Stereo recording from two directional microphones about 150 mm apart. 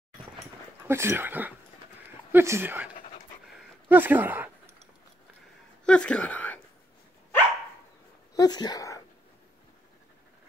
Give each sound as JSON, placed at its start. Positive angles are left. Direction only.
{"t": 0.8, "sound": "speech", "side_deg": -15}
{"t": 3.9, "sound": "speech", "side_deg": -15}
{"t": 5.9, "sound": "a woman's voice", "side_deg": 5}
{"t": 8.4, "sound": "speech", "side_deg": 25}